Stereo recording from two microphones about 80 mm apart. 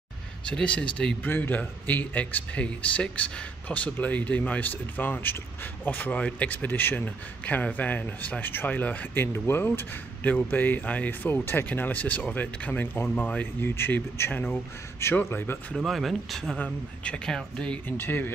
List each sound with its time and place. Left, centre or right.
0.5 s speech: centre
15.7 s speech: centre
16.5 s speech: centre
17.8 s speech: left